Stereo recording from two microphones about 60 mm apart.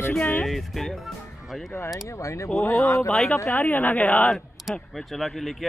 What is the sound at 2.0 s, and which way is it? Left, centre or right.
Speech, left.